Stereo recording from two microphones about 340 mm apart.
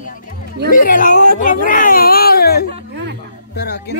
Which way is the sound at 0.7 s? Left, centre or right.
Left.